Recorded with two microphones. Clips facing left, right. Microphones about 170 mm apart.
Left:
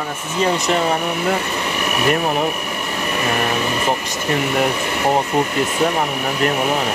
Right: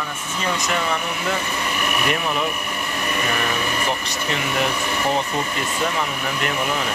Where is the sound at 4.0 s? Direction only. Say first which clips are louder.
Left 5 dB; 50° left (ahead or behind).